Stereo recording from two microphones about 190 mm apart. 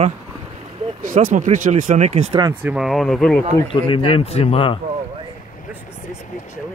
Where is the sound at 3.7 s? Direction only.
30° left (ahead or behind).